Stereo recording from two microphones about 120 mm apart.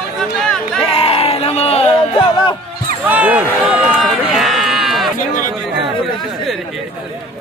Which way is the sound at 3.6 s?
15° right (ahead or behind).